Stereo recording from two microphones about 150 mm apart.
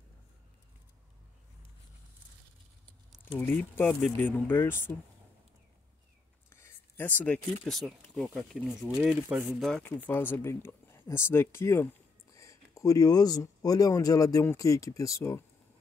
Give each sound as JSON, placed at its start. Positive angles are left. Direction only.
{"t": 3.3, "sound": "speech", "side_deg": 10}
{"t": 6.5, "sound": "speech", "side_deg": 15}
{"t": 9.7, "sound": "speech", "side_deg": 10}